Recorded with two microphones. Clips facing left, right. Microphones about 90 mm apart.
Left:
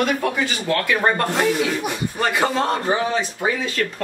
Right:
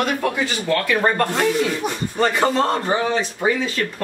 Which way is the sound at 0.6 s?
5° left (ahead or behind).